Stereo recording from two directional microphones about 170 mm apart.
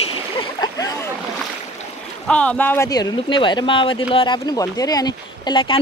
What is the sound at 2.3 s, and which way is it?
Speech, 5° left (ahead or behind).